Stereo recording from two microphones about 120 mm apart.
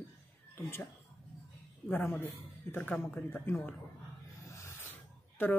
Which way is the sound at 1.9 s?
15° left (ahead or behind).